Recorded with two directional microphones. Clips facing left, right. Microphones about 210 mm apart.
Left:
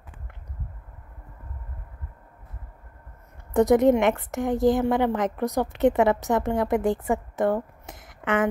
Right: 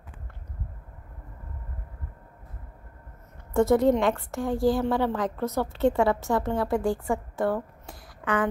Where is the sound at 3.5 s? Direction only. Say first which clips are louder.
Left 3 dB; 15° left (ahead or behind).